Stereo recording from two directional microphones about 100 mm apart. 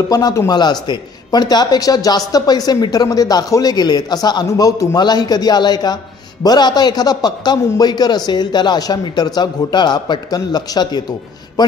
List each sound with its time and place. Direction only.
0.1 s a man's voice: 40° left (ahead or behind)